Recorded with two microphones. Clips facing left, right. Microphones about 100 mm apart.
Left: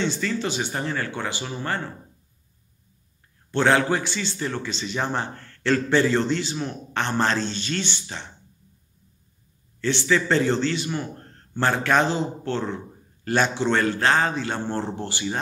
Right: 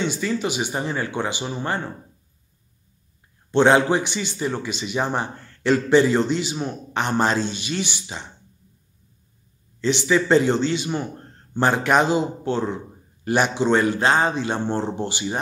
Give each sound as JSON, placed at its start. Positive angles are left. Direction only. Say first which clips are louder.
{"t": 0.0, "sound": "a man's voice", "louder": "right 2 dB", "side_deg": -15}
{"t": 3.5, "sound": "a man's voice", "louder": "right 4 dB", "side_deg": -20}
{"t": 9.8, "sound": "a man's voice", "louder": "right 2 dB", "side_deg": -15}